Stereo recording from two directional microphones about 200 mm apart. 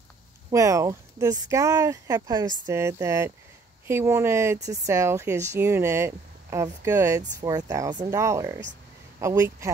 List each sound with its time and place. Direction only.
0.5 s speech: 15° right (ahead or behind)